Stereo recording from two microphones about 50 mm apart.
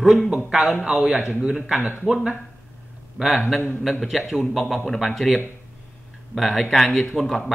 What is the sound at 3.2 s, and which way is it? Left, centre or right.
Speech, centre.